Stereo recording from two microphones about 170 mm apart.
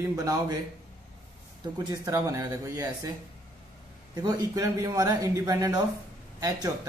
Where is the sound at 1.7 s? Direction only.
25° right (ahead or behind).